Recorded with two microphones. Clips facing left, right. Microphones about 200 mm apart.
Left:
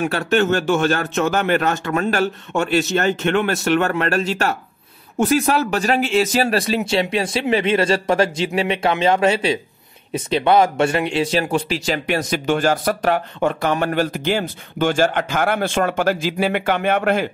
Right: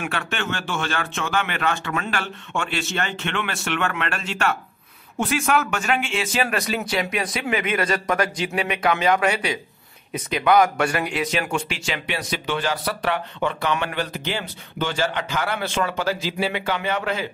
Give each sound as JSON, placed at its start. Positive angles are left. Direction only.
{"t": 0.0, "sound": "a man's voice", "side_deg": 40}